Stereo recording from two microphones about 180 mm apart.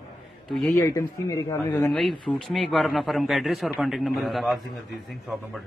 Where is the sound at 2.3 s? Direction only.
Centre (ahead or behind).